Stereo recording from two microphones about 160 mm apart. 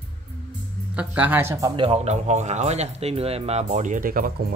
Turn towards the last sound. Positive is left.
turn(degrees=-60)  # may be behind; listen again after turning